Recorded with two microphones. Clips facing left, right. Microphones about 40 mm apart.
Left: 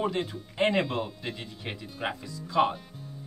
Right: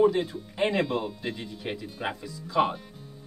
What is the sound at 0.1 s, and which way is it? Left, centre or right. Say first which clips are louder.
Speech: right 3 dB; centre.